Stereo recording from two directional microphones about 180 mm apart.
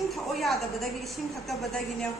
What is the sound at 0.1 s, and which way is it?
A woman's voice, centre (ahead or behind).